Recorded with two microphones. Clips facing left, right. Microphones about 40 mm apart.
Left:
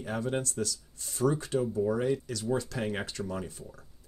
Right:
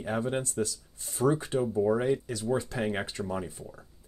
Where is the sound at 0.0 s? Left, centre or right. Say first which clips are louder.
Right 2 dB; centre.